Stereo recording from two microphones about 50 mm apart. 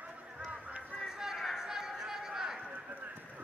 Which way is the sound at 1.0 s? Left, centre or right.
Centre.